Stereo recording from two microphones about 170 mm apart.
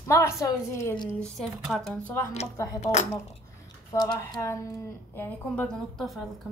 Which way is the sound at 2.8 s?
40° left (ahead or behind).